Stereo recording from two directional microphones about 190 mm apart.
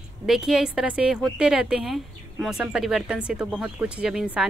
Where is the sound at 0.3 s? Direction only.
5° right (ahead or behind).